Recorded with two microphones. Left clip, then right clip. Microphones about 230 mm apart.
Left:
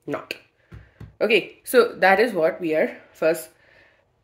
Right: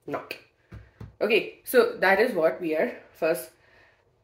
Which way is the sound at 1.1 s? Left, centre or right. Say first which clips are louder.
Left 4 dB; left.